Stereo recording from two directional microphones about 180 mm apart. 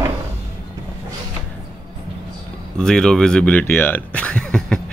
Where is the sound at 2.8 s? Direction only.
5° left (ahead or behind).